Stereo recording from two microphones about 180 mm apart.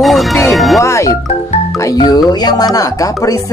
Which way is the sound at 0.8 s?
15° left (ahead or behind).